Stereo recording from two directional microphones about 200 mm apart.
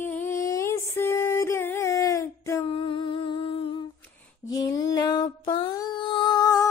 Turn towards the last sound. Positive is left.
turn(degrees=15)  # may be behind; listen again after turning